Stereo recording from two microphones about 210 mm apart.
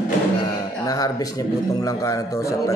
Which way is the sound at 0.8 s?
15° left (ahead or behind).